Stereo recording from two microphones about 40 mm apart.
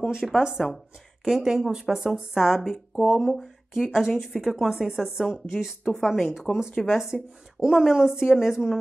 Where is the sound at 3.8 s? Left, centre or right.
Centre.